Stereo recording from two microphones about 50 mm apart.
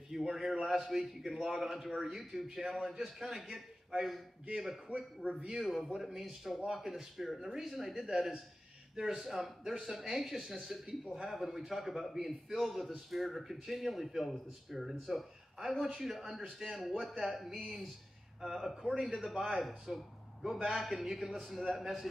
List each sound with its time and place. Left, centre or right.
0.1 s speech: centre
5.6 s speech: centre